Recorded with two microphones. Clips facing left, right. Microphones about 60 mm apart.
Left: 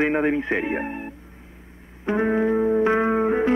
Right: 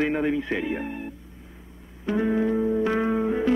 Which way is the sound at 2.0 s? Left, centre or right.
Left.